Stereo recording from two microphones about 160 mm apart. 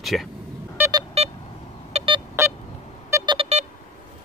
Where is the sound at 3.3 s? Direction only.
40° right (ahead or behind).